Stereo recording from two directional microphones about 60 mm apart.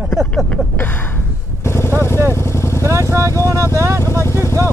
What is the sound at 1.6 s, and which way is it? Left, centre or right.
Vehicle, left.